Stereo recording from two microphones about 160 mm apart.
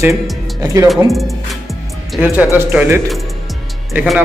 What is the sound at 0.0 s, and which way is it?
Speech, 20° right (ahead or behind).